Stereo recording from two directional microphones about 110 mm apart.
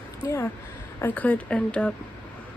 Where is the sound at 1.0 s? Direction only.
15° left (ahead or behind).